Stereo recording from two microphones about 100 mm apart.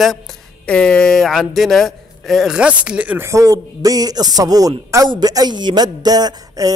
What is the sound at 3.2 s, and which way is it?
Mantra, 30° right (ahead or behind).